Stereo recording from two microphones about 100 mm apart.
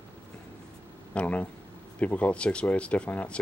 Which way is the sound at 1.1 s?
15° left (ahead or behind).